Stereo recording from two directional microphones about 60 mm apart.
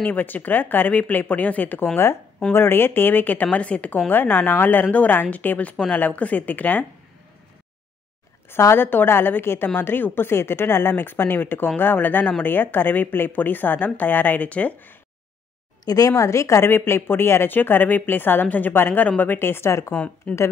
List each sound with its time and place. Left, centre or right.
0.0 s speech: left
3.5 s speech: left
4.1 s speech: left
8.5 s speech: left
15.8 s a woman's voice: left
16.7 s speech: left
19.3 s speech: left
19.9 s speech: left